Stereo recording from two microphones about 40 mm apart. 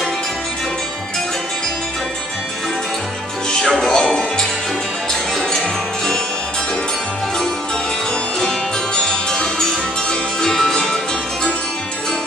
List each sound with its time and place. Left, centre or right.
3.6 s music: centre
3.9 s music: centre
8.4 s music: centre